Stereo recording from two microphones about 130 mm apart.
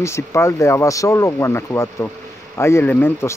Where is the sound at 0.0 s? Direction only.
20° left (ahead or behind).